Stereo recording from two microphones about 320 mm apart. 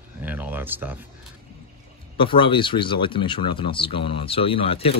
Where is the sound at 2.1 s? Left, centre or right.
Centre.